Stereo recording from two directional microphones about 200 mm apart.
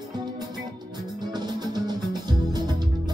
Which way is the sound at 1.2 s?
20° right (ahead or behind).